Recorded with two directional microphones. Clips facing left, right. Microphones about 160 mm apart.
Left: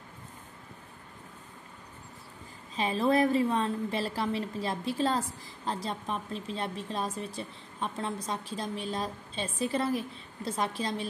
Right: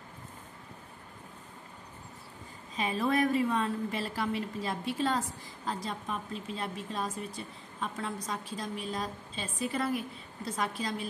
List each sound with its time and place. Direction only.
2.7 s a woman's voice: 30° left (ahead or behind)